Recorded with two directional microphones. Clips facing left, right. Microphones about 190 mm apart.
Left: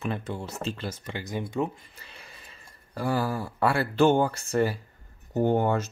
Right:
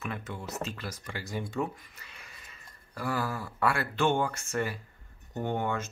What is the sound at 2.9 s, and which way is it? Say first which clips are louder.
Speech: left 5 dB; 30° left (ahead or behind).